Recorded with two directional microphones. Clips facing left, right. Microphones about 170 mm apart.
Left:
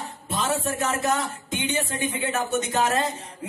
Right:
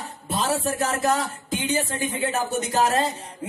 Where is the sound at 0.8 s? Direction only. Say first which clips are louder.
Right 2 dB; 35° right (ahead or behind).